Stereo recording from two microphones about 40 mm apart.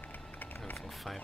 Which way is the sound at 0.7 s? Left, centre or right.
Centre.